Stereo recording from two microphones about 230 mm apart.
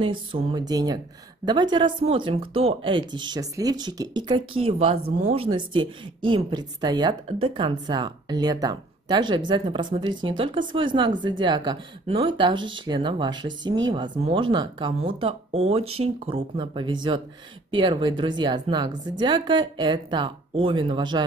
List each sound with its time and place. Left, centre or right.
0.0 s a woman's voice: right